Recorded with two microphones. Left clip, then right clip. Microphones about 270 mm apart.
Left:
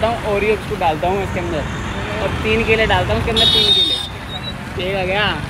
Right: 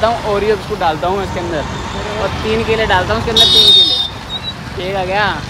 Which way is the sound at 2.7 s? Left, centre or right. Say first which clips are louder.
Right 3 dB; centre.